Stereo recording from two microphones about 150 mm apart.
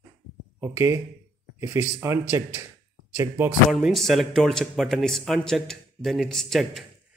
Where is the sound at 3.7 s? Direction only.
Centre (ahead or behind).